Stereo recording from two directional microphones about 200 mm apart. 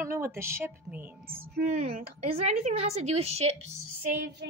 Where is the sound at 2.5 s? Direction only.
35° right (ahead or behind).